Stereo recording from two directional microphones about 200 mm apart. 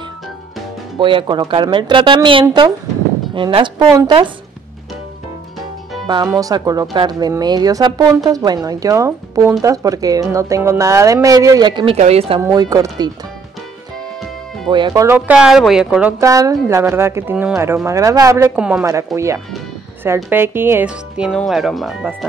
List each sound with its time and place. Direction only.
0.9 s a woman's voice: 25° right (ahead or behind)
6.0 s speech: 20° right (ahead or behind)
12.4 s speech: 15° right (ahead or behind)
14.7 s speech: 20° right (ahead or behind); by 22.1 s centre (ahead or behind)